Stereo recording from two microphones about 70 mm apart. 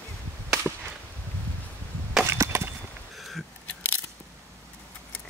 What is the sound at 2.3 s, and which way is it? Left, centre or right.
Chop, right.